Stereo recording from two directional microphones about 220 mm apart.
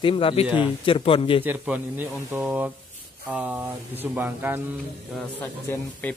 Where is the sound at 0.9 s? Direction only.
25° left (ahead or behind).